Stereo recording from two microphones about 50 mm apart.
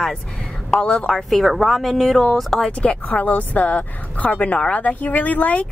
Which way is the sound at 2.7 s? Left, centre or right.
Left.